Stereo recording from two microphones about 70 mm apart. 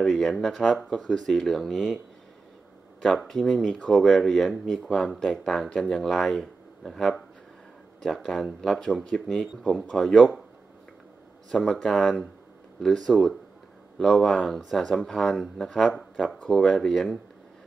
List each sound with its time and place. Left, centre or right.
0.0 s speech: centre
3.3 s speech: centre
4.8 s speech: centre
5.4 s speech: centre
11.5 s speech: centre